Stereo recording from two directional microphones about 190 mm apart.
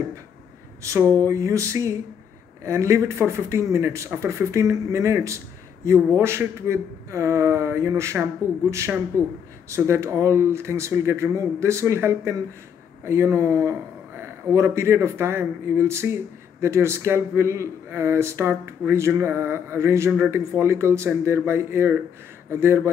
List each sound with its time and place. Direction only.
0.8 s speech: 15° right (ahead or behind)